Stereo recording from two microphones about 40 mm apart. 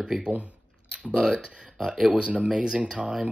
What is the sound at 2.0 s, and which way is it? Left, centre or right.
Speech, right.